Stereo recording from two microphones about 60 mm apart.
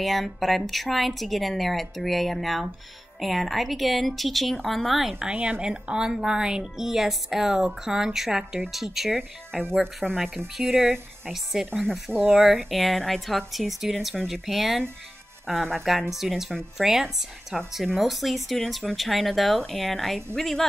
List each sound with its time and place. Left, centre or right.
0.0 s a woman's voice: centre
5.3 s a woman's voice: centre
10.6 s speech: centre
11.6 s speech: centre
12.1 s speech: right
12.6 s a woman's voice: centre